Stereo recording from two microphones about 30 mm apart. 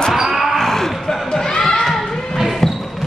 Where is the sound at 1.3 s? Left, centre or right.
Left.